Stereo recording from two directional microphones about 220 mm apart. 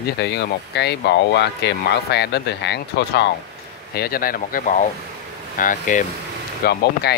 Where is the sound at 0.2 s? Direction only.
50° left (ahead or behind).